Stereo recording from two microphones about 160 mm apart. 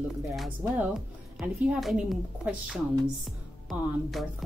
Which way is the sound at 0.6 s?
10° right (ahead or behind).